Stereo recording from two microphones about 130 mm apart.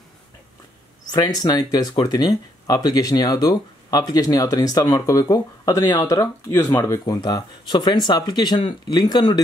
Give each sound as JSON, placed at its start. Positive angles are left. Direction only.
{"t": 1.1, "sound": "speech", "side_deg": 30}